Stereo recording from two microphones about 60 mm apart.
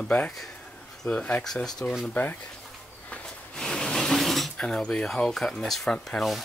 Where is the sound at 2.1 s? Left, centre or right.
Left.